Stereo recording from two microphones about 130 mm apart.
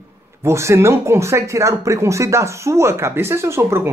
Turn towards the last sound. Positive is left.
turn(degrees=-20)  # may be behind; listen again after turning